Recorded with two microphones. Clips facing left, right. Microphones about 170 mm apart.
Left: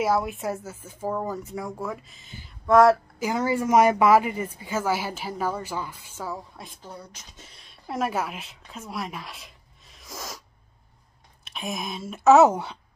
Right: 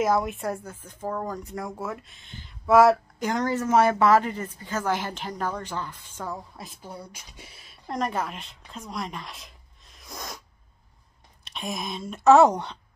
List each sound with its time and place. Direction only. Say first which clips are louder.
0.0 s speech: even; 5° left (ahead or behind)
11.4 s speech: even; 5° left (ahead or behind)